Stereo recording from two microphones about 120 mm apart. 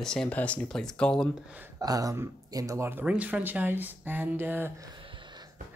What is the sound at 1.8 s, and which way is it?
Speech, 30° right (ahead or behind).